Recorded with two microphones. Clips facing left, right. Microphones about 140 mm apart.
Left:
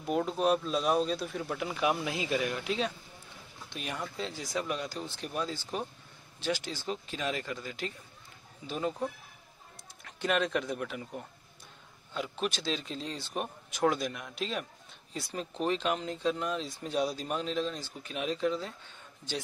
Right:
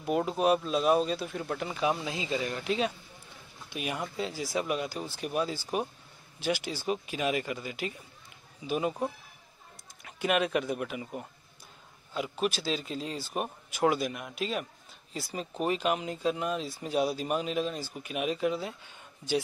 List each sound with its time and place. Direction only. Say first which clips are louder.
0.0 s speech: right 2 dB; 5° right (ahead or behind)
2.0 s speech: left 1 dB; 25° right (ahead or behind)
2.5 s speech: right 2 dB; centre (ahead or behind)
10.0 s speech: right 2 dB; 5° right (ahead or behind)